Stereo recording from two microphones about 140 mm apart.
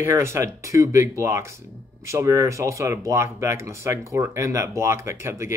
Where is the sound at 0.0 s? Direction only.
20° right (ahead or behind).